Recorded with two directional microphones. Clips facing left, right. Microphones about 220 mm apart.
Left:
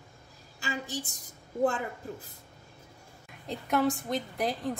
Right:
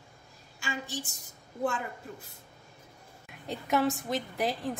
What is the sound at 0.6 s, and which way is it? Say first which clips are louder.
Speech: left 2 dB; 40° left (ahead or behind).